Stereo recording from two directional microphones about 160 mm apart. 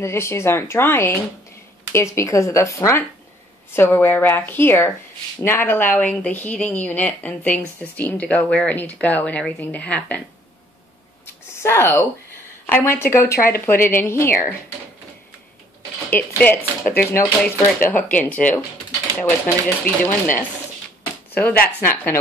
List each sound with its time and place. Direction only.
0.0 s speech: 15° left (ahead or behind)
2.1 s speech: 20° left (ahead or behind)
11.6 s speech: 15° left (ahead or behind)
16.1 s speech: 10° left (ahead or behind)